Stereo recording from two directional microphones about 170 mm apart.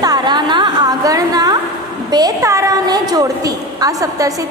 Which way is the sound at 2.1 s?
20° right (ahead or behind).